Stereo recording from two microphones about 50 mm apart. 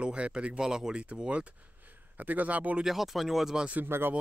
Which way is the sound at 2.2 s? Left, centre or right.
Right.